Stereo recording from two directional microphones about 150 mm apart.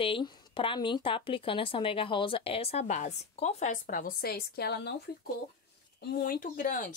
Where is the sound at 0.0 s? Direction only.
35° left (ahead or behind).